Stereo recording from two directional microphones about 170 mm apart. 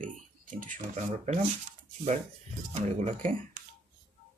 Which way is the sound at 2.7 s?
45° right (ahead or behind).